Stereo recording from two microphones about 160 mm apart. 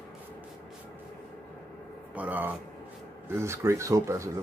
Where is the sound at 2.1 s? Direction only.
10° right (ahead or behind).